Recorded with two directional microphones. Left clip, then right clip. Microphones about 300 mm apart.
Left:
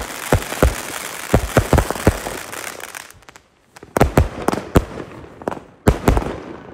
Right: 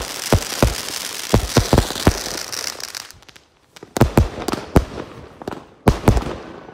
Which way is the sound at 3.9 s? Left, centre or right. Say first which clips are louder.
Left 2 dB; centre.